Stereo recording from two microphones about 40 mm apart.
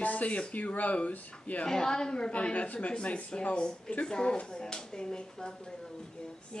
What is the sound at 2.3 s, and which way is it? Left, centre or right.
Speech, left.